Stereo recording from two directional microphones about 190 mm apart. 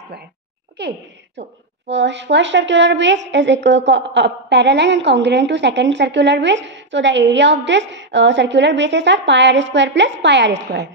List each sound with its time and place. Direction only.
0.8 s a woman's voice: 65° right (ahead or behind)